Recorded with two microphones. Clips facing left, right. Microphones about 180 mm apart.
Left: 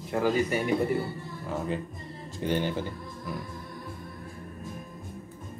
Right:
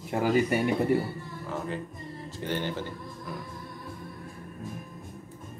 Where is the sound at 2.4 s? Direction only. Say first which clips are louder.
Left 4 dB; 15° left (ahead or behind).